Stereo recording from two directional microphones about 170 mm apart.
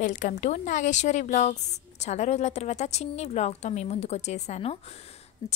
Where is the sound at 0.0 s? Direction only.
50° left (ahead or behind).